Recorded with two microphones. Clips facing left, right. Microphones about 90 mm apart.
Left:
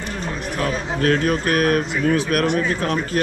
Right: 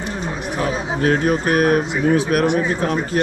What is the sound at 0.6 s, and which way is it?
Speech, 20° right (ahead or behind).